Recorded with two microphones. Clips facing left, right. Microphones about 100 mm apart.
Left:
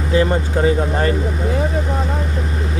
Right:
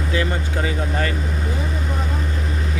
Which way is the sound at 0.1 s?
30° left (ahead or behind).